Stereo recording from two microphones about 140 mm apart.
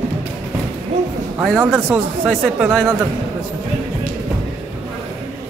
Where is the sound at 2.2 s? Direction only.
5° left (ahead or behind).